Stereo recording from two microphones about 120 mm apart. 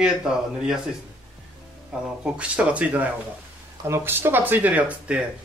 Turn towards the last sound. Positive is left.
turn(degrees=-10)  # may be behind; listen again after turning